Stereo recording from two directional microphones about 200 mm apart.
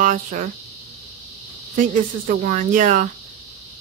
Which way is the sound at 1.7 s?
40° right (ahead or behind).